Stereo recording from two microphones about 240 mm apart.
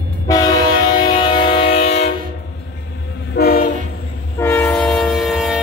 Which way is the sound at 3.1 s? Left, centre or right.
Left.